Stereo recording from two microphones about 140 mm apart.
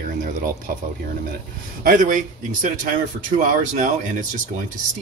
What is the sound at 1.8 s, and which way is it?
Speech, 70° right (ahead or behind).